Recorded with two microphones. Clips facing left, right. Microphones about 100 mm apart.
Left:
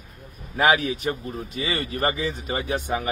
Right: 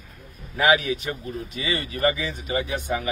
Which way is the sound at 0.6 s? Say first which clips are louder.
Even; 35° left (ahead or behind).